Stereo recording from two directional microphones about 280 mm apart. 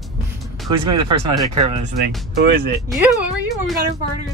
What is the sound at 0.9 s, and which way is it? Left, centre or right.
Speech, right.